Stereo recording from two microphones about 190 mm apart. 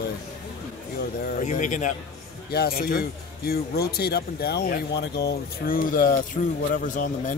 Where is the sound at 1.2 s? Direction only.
40° left (ahead or behind).